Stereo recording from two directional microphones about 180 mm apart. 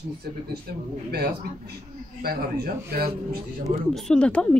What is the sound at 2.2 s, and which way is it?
Speech, 55° right (ahead or behind).